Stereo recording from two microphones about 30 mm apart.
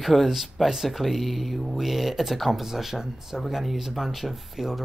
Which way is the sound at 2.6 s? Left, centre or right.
Centre.